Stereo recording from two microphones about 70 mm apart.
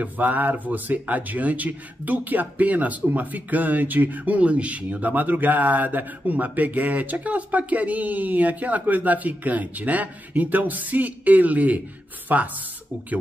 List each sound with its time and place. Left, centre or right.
0.0 s speech: right